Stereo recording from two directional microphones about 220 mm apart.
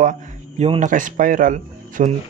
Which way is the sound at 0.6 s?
30° right (ahead or behind).